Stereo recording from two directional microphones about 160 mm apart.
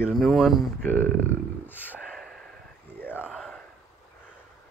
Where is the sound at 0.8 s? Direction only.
10° left (ahead or behind).